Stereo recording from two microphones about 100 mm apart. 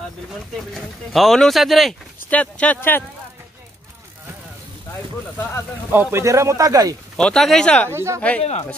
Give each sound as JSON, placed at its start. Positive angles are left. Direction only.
{"t": 0.6, "sound": "speech", "side_deg": 0}
{"t": 2.2, "sound": "speech", "side_deg": 15}
{"t": 5.9, "sound": "speech", "side_deg": -25}
{"t": 7.2, "sound": "speech", "side_deg": 5}
{"t": 7.9, "sound": "speech", "side_deg": -25}
{"t": 8.4, "sound": "speech", "side_deg": 90}